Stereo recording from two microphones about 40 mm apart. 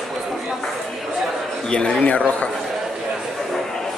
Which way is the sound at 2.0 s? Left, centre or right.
Left.